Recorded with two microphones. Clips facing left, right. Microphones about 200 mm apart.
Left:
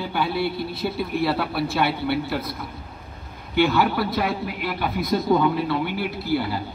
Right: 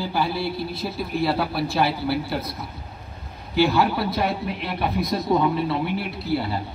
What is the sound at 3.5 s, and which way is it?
A man's voice, 30° right (ahead or behind).